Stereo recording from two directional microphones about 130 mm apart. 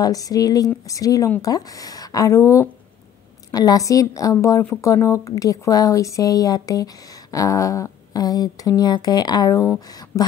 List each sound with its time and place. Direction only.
0.0 s speech: 30° left (ahead or behind)